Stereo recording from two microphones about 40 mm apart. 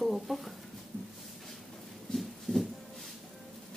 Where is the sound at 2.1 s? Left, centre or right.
Centre.